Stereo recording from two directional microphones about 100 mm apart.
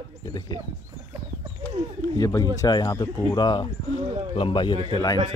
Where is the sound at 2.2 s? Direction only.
35° left (ahead or behind); by 4.8 s 55° left (ahead or behind).